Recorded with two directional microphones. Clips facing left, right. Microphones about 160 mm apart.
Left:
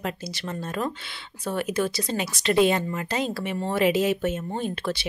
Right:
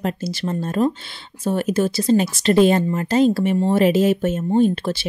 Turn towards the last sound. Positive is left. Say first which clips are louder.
# right 11 dB
turn(degrees=-30)  # may be behind; listen again after turning